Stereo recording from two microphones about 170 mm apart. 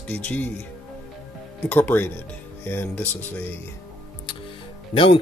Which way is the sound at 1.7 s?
10° left (ahead or behind).